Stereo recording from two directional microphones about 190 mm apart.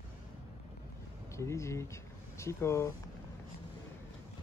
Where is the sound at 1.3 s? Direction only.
15° left (ahead or behind).